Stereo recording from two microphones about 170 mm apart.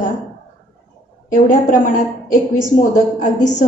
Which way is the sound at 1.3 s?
50° left (ahead or behind).